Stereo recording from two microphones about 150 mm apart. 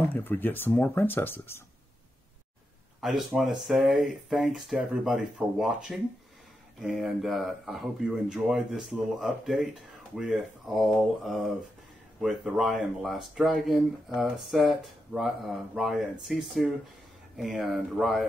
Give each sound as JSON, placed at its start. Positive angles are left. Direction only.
{"t": 0.1, "sound": "speech", "side_deg": 10}
{"t": 3.0, "sound": "speech", "side_deg": 0}